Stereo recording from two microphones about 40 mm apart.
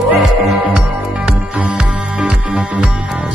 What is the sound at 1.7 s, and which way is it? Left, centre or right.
Music, right.